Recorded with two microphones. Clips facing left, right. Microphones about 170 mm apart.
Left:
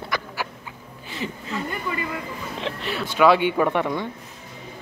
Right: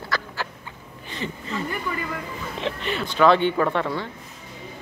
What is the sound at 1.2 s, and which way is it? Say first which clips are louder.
Speech: even; centre (ahead or behind).